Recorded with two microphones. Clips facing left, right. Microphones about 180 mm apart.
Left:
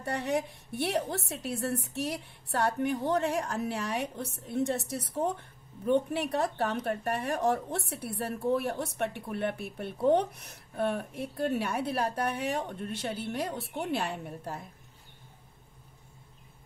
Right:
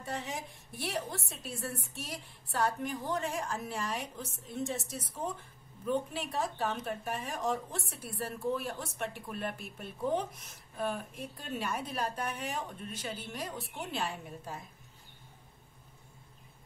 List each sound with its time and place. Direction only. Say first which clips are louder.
0.0 s a woman's voice: left 8 dB; 65° left (ahead or behind)